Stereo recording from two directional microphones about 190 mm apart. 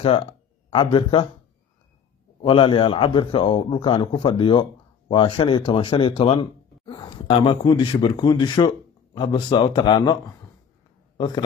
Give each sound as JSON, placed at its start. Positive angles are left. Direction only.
{"t": 0.0, "sound": "speech", "side_deg": 30}
{"t": 2.4, "sound": "a man's voice", "side_deg": 25}
{"t": 11.1, "sound": "speech", "side_deg": 20}